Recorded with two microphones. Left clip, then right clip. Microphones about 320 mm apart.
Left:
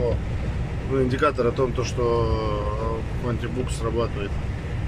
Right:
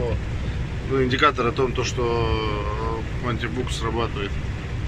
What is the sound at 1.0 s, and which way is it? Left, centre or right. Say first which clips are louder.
Speech: right 2 dB; centre.